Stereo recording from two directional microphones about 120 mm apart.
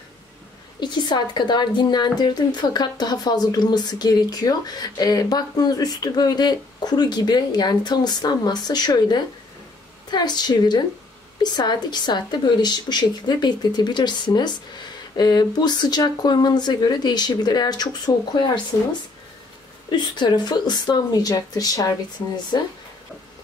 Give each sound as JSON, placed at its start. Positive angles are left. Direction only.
{"t": 0.7, "sound": "a woman's voice", "side_deg": 40}
{"t": 19.9, "sound": "a woman's voice", "side_deg": 40}